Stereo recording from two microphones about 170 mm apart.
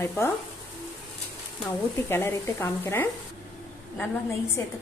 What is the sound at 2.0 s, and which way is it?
Speech, 15° left (ahead or behind).